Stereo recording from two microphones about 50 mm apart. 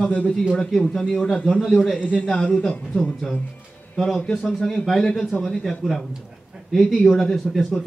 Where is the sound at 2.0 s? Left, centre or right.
Left.